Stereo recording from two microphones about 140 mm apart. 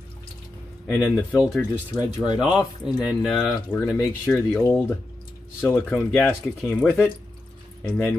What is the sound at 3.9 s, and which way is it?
Speech, 15° left (ahead or behind).